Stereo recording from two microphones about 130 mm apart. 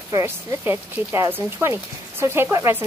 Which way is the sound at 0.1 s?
25° right (ahead or behind).